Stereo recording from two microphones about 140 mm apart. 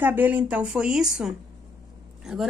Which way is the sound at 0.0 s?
15° right (ahead or behind).